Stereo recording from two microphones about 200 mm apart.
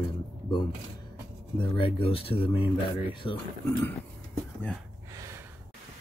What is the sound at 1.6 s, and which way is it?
Speech, 25° left (ahead or behind).